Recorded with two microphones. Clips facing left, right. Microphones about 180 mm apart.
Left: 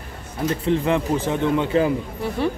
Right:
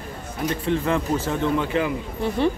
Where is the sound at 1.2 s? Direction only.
15° left (ahead or behind).